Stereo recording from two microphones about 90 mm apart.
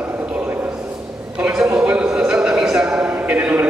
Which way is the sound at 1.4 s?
10° right (ahead or behind).